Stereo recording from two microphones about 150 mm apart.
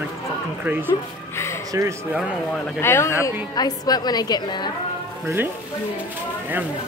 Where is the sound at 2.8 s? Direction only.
15° left (ahead or behind).